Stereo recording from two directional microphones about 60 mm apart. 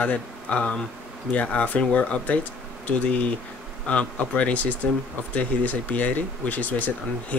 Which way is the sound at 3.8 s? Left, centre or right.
Left.